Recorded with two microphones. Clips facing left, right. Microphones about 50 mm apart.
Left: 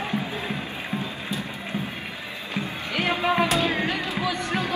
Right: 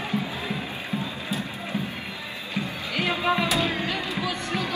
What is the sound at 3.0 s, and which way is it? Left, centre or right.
Music, left.